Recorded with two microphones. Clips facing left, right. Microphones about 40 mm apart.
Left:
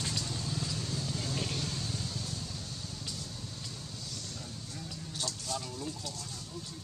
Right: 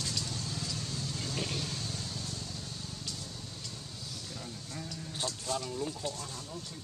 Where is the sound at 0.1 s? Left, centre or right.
Centre.